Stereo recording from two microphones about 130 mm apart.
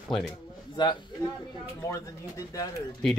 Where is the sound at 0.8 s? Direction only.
35° left (ahead or behind).